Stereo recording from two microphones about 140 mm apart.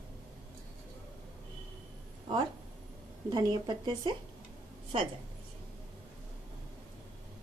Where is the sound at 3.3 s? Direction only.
30° right (ahead or behind).